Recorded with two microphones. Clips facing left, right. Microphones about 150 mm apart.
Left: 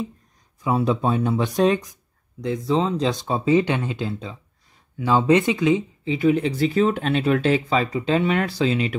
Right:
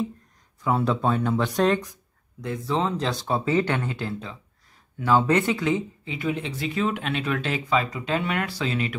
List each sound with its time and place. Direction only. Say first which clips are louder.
0.6 s speech: left 2 dB; 15° left (ahead or behind)
6.0 s speech: left 14 dB; 35° left (ahead or behind)